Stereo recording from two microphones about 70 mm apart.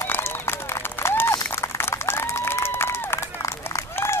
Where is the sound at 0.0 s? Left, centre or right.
Left.